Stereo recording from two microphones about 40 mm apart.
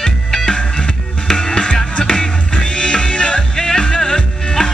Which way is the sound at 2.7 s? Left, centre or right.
Left.